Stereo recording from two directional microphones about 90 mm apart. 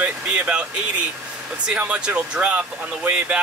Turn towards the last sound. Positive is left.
turn(degrees=-15)  # may be behind; listen again after turning